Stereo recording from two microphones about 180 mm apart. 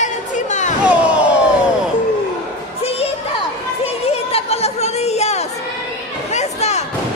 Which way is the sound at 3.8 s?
35° left (ahead or behind).